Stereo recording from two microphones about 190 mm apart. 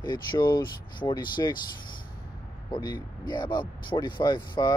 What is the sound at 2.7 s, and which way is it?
Speech, 25° left (ahead or behind).